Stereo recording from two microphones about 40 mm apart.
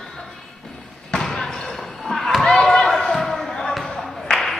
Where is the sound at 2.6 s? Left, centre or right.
Centre.